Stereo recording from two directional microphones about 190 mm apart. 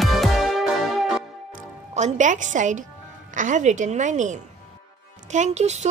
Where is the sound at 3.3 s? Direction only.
40° right (ahead or behind).